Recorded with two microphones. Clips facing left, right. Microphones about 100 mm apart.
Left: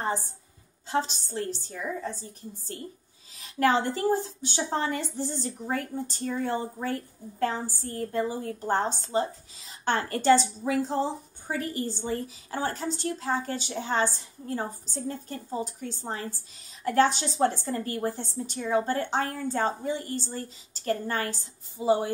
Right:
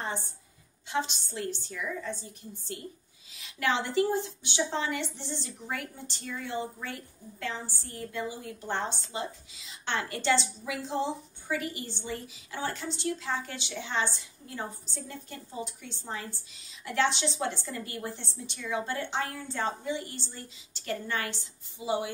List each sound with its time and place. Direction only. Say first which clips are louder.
0.8 s a woman's voice: left 3 dB; 40° left (ahead or behind)